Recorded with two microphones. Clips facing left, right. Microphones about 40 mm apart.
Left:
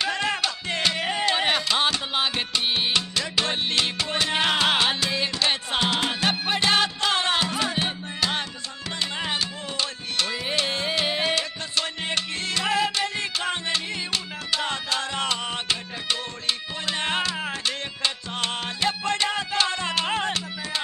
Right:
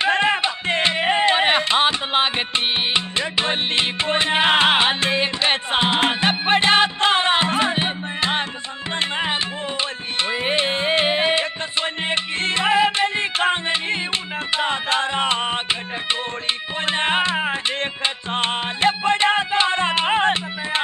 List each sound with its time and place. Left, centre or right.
0.0 s music: right